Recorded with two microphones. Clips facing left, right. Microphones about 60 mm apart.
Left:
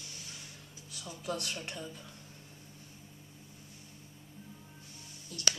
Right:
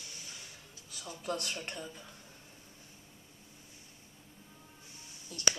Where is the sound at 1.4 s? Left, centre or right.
Centre.